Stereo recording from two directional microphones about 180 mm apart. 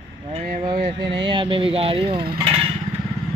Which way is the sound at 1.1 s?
25° right (ahead or behind).